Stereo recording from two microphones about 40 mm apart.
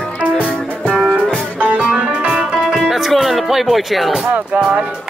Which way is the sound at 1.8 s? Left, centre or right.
Right.